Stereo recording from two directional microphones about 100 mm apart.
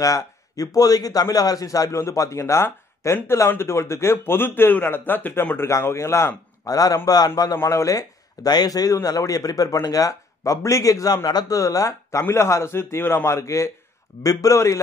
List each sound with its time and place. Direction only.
0.0 s a man's voice: 35° left (ahead or behind)
7.5 s a man's voice: 30° left (ahead or behind)
8.5 s a man's voice: 40° left (ahead or behind)